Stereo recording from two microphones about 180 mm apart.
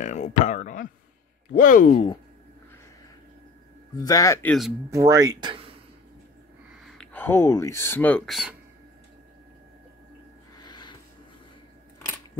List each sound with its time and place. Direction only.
0.0 s a sound: 40° left (ahead or behind)
1.5 s speech: 50° left (ahead or behind)
4.0 s speech: 20° left (ahead or behind)
4.5 s speech: centre (ahead or behind)
4.9 s speech: 20° right (ahead or behind)
6.8 s speech: centre (ahead or behind)
10.6 s a sound: 25° left (ahead or behind)